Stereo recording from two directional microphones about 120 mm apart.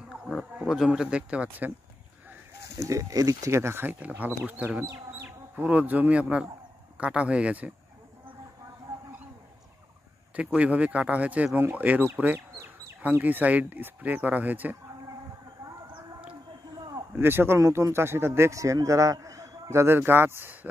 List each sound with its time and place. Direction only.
0.1 s speech: 5° right (ahead or behind)
2.8 s speech: 25° right (ahead or behind)
10.3 s speech: 10° right (ahead or behind)
15.9 s a sound: 10° right (ahead or behind)
17.1 s speech: 20° right (ahead or behind)